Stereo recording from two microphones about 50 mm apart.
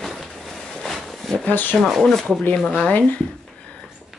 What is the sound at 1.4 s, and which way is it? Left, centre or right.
Speech, left.